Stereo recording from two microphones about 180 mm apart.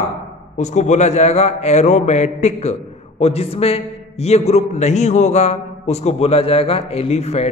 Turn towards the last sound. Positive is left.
turn(degrees=35)  # may be behind; listen again after turning